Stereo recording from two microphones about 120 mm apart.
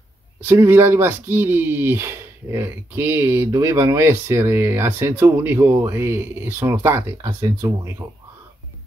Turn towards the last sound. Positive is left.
turn(degrees=-30)  # may be behind; listen again after turning